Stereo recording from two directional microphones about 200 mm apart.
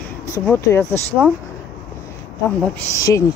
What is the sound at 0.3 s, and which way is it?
Speech, 10° left (ahead or behind).